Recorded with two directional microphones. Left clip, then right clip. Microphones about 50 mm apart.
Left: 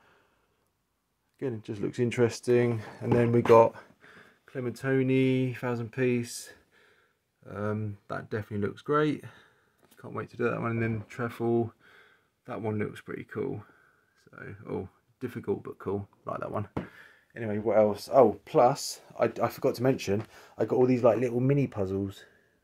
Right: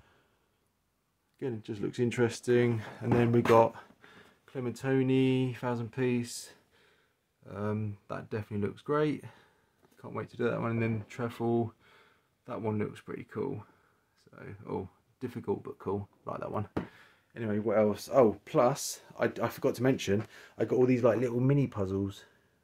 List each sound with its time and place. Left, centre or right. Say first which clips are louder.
1.4 s speech: left 3 dB; left
2.4 s speech: left 2 dB; left
3.5 s a sound: left 6 dB; left
4.5 s speech: left 2 dB; left
9.9 s speech: left 2 dB; left
10.6 s speech: left 2 dB; centre
11.8 s a sound: left 4 dB; left
12.8 s speech: left 2 dB; left
14.2 s speech: left 3 dB; left
16.5 s speech: left 1 dB; left
17.3 s speech: left 3 dB; centre; by 20.8 s left
20.8 s speech: left 3 dB; centre